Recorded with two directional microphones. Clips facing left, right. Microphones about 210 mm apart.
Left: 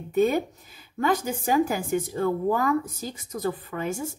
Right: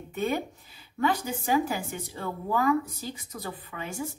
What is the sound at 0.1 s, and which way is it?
A woman's voice, 40° left (ahead or behind).